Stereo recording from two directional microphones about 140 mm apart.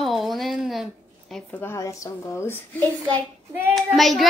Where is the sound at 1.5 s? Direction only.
15° left (ahead or behind).